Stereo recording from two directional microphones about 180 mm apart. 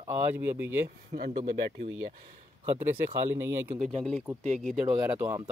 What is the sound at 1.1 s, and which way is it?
Speech, 45° right (ahead or behind).